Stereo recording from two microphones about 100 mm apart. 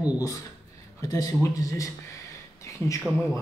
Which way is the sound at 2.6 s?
30° left (ahead or behind).